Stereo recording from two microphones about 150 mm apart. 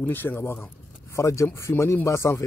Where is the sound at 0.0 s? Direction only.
15° left (ahead or behind).